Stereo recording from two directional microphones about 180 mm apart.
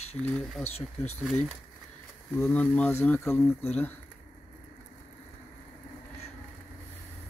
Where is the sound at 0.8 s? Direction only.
35° left (ahead or behind).